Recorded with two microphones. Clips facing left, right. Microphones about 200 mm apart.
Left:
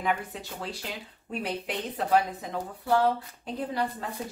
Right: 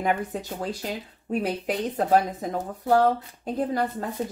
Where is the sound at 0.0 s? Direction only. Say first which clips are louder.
Right 4 dB; 45° right (ahead or behind).